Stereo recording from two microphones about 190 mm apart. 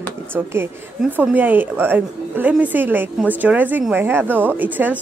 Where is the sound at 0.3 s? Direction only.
15° right (ahead or behind).